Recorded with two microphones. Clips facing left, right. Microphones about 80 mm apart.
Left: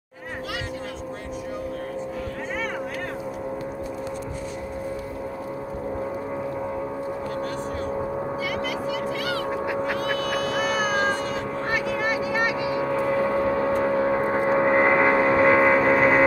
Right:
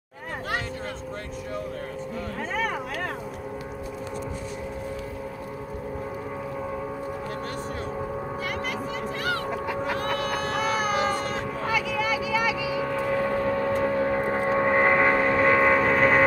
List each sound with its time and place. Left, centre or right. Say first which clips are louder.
8.5 s vehicle: left 3 dB; right
9.9 s music: left 2 dB; right
12.2 s a sound: left 2 dB; left
13.0 s vehicle: left 2 dB; left
13.8 s a sound: left 2 dB; left
14.2 s vehicle: left 3 dB; centre